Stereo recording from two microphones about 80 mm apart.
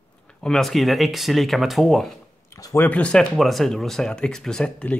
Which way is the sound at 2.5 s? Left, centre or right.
Left.